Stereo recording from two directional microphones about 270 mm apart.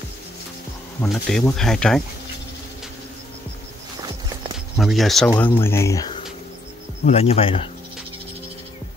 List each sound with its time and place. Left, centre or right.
1.0 s speech: centre
4.7 s speech: centre
7.1 s speech: left